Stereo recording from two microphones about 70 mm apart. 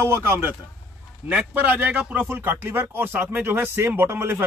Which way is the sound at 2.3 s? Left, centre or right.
Right.